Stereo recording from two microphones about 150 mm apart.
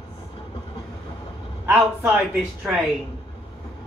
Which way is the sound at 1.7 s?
5° right (ahead or behind).